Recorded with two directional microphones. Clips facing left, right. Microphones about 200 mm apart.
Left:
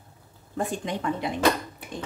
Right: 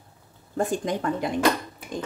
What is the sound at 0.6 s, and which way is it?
Speech, 45° right (ahead or behind).